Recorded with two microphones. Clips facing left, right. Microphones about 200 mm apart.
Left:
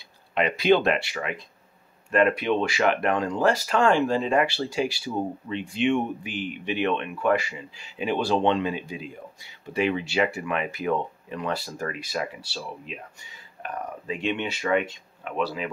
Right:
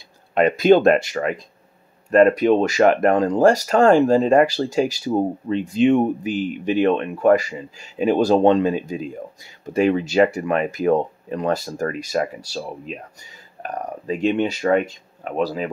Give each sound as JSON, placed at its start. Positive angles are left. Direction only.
{"t": 0.3, "sound": "speech", "side_deg": -45}